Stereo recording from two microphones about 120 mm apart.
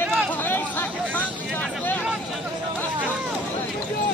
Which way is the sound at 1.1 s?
10° left (ahead or behind).